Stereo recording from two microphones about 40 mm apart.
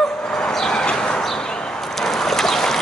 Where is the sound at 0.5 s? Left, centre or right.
Centre.